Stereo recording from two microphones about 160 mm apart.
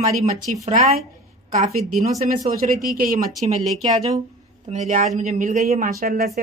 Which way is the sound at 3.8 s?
25° right (ahead or behind).